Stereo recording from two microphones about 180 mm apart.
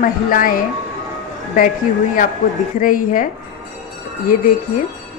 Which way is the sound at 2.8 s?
50° left (ahead or behind).